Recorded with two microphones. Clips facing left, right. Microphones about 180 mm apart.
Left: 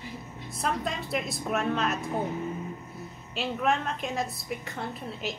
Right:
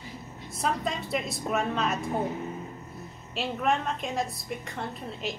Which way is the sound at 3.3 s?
Centre (ahead or behind).